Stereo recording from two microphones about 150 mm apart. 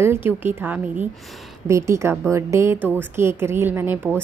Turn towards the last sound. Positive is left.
turn(degrees=-15)  # may be behind; listen again after turning